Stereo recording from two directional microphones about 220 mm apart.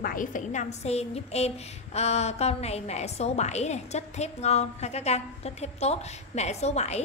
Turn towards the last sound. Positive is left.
turn(degrees=30)  # may be behind; listen again after turning